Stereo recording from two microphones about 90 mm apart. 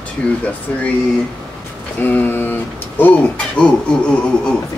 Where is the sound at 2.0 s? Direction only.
20° left (ahead or behind).